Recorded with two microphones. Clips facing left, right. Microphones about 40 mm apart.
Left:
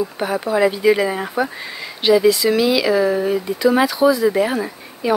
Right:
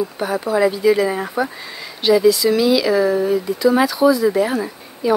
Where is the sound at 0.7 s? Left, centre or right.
Left.